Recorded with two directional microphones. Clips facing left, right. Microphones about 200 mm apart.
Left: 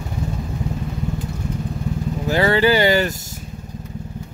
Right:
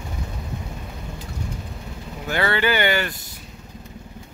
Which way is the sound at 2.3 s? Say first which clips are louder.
Left 6 dB; 35° left (ahead or behind).